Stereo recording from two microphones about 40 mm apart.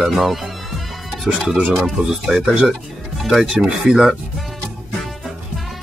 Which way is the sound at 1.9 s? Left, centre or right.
Centre.